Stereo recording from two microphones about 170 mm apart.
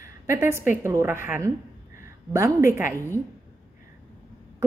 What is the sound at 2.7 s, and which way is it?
Speech, 15° right (ahead or behind).